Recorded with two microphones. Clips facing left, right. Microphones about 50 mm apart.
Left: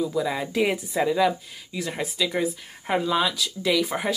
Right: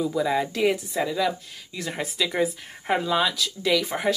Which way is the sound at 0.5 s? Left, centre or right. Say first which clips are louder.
Even; centre.